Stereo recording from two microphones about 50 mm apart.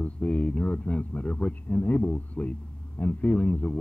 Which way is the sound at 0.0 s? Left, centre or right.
Left.